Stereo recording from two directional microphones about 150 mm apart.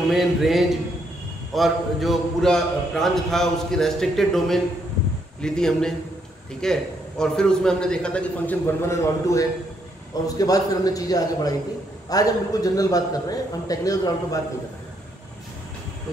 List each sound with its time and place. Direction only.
0.1 s a man's voice: centre (ahead or behind); by 14.4 s 25° left (ahead or behind)